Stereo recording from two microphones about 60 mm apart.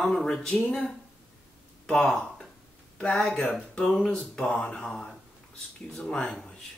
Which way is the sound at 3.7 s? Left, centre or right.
Centre.